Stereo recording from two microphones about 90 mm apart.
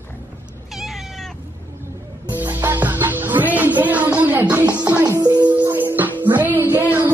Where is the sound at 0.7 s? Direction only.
Centre (ahead or behind).